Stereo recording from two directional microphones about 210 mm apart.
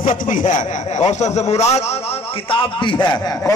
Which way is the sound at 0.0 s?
40° left (ahead or behind).